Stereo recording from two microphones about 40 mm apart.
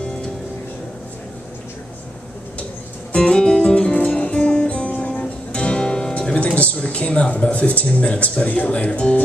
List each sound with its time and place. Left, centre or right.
3.1 s music: left
4.2 s music: left
4.5 s music: left
6.8 s a sound: left
7.5 s speech: left